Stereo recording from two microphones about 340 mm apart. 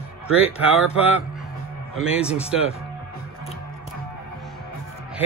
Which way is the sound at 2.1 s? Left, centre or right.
Centre.